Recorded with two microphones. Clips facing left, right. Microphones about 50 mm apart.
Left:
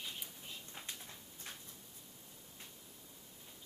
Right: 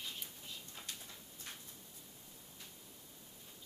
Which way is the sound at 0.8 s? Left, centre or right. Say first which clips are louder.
Left 1 dB; left.